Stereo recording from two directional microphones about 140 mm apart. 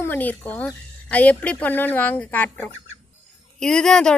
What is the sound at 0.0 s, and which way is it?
Speech, 15° left (ahead or behind).